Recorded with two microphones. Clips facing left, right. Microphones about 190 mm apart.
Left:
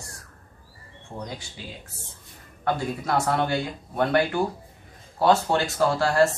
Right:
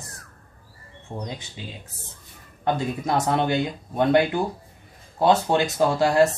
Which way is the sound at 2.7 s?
20° right (ahead or behind).